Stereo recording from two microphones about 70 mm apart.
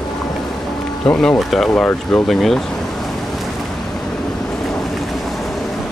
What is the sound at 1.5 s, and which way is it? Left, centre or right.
Speech, centre.